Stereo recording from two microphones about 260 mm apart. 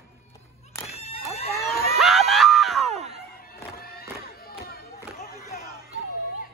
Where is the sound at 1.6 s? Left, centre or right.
Centre.